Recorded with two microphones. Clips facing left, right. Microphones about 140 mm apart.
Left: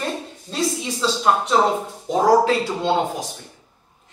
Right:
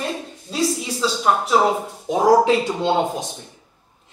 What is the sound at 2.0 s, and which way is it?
Speech, 20° right (ahead or behind).